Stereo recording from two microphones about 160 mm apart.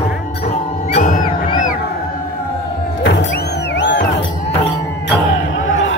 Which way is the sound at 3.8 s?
90° left.